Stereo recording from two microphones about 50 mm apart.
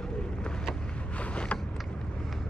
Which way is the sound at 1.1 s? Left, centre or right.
Left.